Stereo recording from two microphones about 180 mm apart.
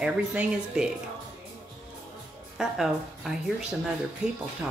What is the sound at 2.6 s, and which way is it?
Speech, centre (ahead or behind).